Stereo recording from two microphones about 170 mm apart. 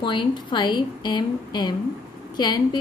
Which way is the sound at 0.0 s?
25° left (ahead or behind).